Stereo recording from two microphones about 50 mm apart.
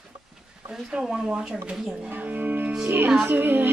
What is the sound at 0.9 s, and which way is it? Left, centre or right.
Speech, centre.